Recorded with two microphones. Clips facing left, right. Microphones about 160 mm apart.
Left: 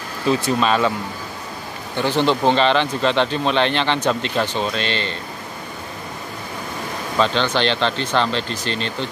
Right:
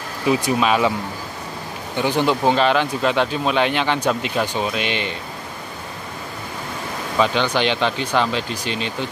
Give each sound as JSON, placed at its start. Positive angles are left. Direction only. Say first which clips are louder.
{"t": 0.2, "sound": "speech", "louder": "even", "side_deg": -15}
{"t": 2.0, "sound": "speech", "louder": "left 1 dB", "side_deg": -10}
{"t": 7.2, "sound": "speech", "louder": "even", "side_deg": -10}